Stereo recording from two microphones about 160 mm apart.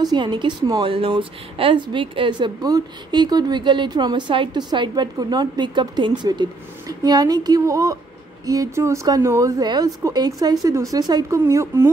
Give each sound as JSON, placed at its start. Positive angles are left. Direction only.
{"t": 0.0, "sound": "a woman's voice", "side_deg": -25}